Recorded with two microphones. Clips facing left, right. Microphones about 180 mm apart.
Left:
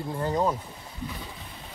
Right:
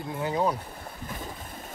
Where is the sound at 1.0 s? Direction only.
45° right (ahead or behind).